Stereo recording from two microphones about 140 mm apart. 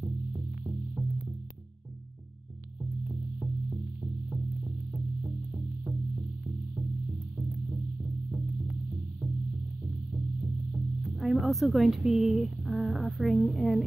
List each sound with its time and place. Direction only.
0.0 s music: 25° right (ahead or behind)
3.1 s music: 20° right (ahead or behind)
7.3 s music: centre (ahead or behind)
10.1 s music: 15° right (ahead or behind)
11.0 s a woman's voice: centre (ahead or behind)